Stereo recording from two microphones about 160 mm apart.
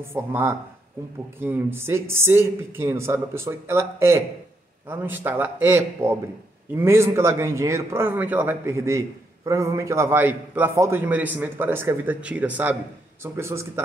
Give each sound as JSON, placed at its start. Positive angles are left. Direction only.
{"t": 0.1, "sound": "a man's voice", "side_deg": -15}